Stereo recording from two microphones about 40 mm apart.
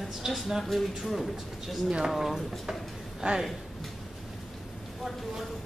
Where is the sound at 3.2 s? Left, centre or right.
Centre.